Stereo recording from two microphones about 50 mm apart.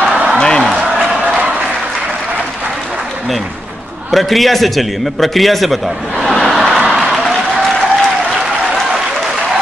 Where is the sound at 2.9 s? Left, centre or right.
Centre.